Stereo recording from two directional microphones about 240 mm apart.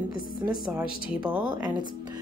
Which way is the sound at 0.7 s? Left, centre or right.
Centre.